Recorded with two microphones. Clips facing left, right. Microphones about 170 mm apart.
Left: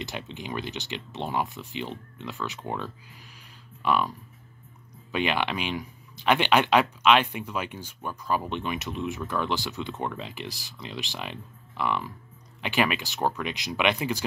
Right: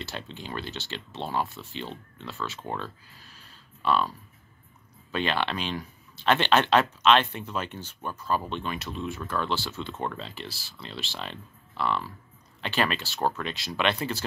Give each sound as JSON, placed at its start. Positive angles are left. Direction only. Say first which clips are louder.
{"t": 0.0, "sound": "speech", "louder": "left 2 dB", "side_deg": 15}
{"t": 5.1, "sound": "speech", "louder": "left 1 dB", "side_deg": 15}